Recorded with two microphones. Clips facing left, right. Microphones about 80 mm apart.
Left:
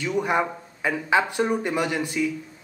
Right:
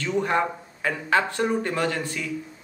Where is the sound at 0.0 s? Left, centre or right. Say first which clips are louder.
Even; centre.